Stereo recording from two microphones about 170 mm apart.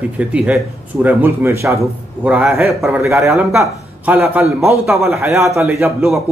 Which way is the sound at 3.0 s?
15° right (ahead or behind).